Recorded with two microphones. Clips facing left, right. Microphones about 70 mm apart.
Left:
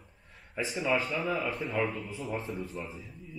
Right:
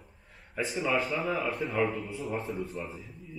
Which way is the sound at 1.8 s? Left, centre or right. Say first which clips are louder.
Right 3 dB; centre.